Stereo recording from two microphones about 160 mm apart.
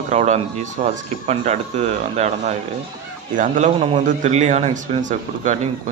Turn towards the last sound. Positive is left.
turn(degrees=-50)  # may be behind; listen again after turning